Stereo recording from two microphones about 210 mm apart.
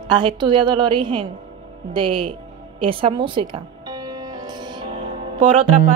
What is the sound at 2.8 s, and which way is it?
Music, 25° right (ahead or behind).